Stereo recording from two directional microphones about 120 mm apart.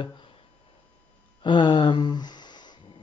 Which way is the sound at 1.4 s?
40° left (ahead or behind).